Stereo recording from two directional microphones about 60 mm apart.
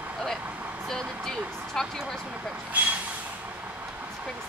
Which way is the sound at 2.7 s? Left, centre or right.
Right.